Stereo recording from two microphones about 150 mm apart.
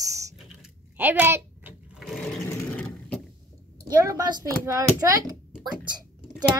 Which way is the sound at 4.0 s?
25° right (ahead or behind).